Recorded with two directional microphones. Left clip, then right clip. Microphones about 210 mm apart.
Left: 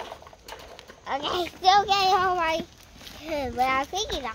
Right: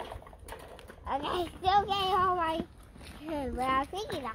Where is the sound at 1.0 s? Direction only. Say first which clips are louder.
Left 5 dB; 25° left (ahead or behind); by 3.9 s 45° left (ahead or behind).